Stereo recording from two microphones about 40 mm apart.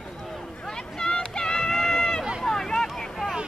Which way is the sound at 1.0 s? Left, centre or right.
Centre.